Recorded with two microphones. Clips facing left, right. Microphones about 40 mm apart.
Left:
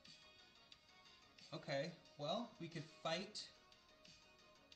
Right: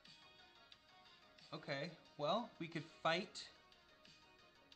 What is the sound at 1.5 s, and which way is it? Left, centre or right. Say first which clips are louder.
Speech: left 1 dB; centre.